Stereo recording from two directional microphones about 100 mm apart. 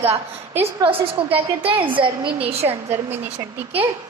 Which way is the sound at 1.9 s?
60° right (ahead or behind).